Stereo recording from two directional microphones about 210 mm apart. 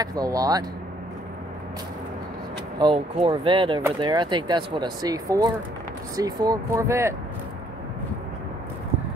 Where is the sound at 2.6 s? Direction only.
20° right (ahead or behind).